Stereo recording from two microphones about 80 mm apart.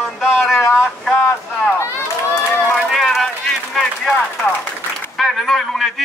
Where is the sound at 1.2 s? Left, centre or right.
Centre.